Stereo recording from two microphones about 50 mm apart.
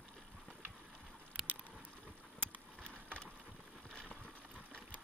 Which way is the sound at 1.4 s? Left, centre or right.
Centre.